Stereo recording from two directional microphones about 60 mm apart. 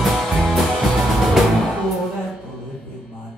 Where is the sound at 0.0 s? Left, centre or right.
Centre.